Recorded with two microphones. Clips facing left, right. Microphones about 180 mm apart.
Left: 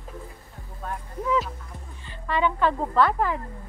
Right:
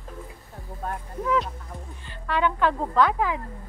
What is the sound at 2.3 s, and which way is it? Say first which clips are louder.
A woman's voice: even; 5° right (ahead or behind).